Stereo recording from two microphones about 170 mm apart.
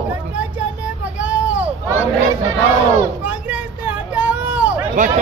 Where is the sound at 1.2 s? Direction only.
10° right (ahead or behind).